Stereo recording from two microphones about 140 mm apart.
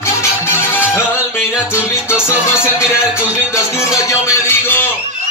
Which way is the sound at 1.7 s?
20° left (ahead or behind).